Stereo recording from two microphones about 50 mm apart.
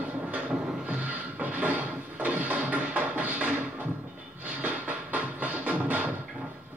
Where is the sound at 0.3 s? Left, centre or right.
Right.